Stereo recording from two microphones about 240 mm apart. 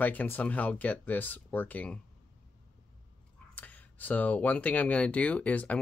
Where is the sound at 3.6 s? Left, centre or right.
Centre.